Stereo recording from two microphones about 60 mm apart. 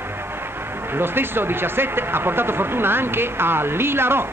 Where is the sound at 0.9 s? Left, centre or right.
Right.